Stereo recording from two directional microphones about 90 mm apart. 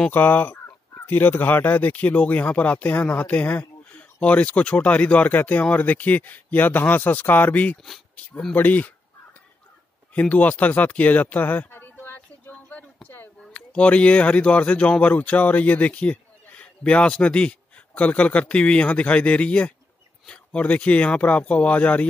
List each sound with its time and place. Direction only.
0.1 s speech: 20° left (ahead or behind)
8.3 s speech: 5° left (ahead or behind)
8.5 s speech: 20° left (ahead or behind)
10.1 s a sound: 15° left (ahead or behind)
13.4 s speech: 10° left (ahead or behind)